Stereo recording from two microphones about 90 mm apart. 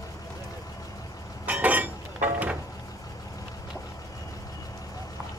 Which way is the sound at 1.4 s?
15° right (ahead or behind).